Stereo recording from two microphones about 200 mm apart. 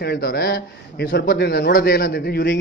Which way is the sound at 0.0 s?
55° left (ahead or behind).